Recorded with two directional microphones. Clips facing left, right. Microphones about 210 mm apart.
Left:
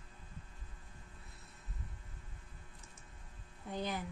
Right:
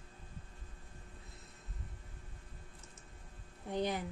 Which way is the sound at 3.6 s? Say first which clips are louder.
Right 4 dB; 20° right (ahead or behind).